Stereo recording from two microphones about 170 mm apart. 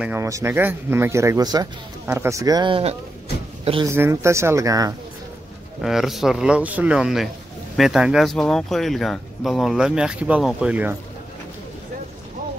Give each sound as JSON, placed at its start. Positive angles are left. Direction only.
{"t": 0.0, "sound": "speech", "side_deg": -15}
{"t": 3.8, "sound": "speech", "side_deg": -15}
{"t": 5.8, "sound": "speech", "side_deg": 0}